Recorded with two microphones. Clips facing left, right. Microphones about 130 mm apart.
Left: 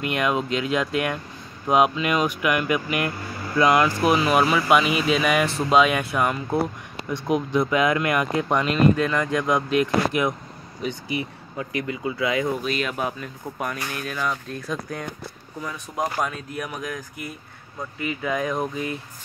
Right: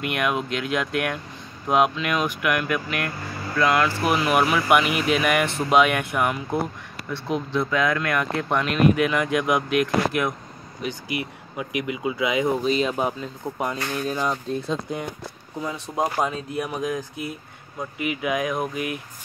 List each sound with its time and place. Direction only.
0.0 s speech: 5° right (ahead or behind); by 3.9 s 15° left (ahead or behind)
4.0 s speech: 5° right (ahead or behind)
7.1 s speech: 10° left (ahead or behind)
8.6 s speech: 10° right (ahead or behind)
9.8 s speech: centre (ahead or behind)
11.5 s speech: 15° right (ahead or behind)